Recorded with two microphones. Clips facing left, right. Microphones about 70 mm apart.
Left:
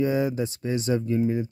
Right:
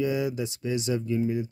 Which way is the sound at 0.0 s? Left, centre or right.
Left.